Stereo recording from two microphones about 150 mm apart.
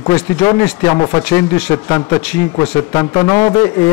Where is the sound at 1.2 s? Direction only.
10° left (ahead or behind).